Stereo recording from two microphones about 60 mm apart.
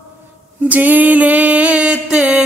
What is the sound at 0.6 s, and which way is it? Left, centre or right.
Mantra, right.